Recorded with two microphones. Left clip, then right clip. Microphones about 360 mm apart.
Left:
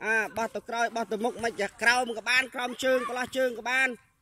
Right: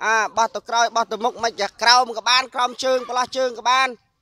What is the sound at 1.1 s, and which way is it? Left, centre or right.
A man's voice, right.